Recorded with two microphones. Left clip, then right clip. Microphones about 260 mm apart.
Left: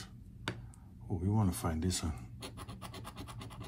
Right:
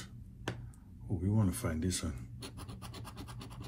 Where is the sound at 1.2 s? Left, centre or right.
Centre.